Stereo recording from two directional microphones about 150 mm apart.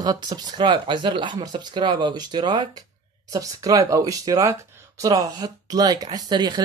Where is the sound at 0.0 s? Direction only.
25° right (ahead or behind).